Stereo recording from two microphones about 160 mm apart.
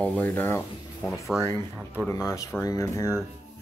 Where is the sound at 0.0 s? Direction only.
10° left (ahead or behind).